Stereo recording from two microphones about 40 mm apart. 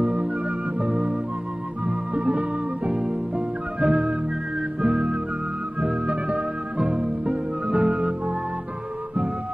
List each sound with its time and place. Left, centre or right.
0.0 s music: right
2.1 s music: right